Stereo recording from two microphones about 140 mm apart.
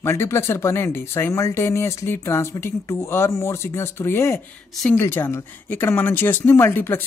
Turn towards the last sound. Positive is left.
turn(degrees=15)  # may be behind; listen again after turning